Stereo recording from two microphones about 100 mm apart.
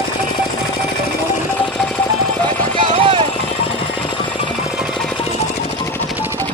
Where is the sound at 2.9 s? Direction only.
60° right (ahead or behind).